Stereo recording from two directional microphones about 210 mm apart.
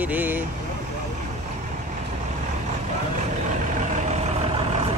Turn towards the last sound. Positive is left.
turn(degrees=-30)  # may be behind; listen again after turning